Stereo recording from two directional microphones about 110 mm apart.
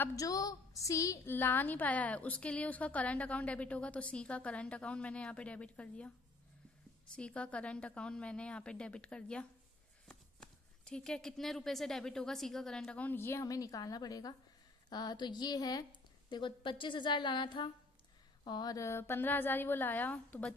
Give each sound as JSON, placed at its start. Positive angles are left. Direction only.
{"t": 0.1, "sound": "a sound", "side_deg": 30}
{"t": 1.3, "sound": "a woman's voice", "side_deg": 20}
{"t": 7.2, "sound": "a woman's voice", "side_deg": 10}